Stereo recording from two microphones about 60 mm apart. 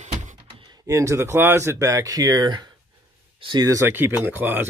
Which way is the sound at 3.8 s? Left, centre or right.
Right.